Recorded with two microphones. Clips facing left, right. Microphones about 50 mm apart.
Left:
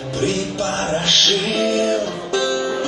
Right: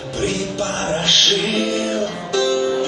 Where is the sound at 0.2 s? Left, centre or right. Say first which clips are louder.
Left 1 dB; right.